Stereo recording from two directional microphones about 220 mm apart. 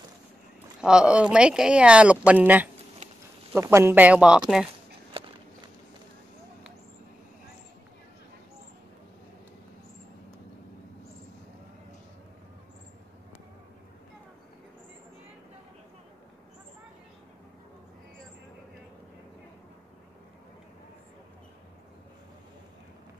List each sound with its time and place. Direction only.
0.7 s speech: 5° right (ahead or behind)
5.2 s walk: 25° right (ahead or behind)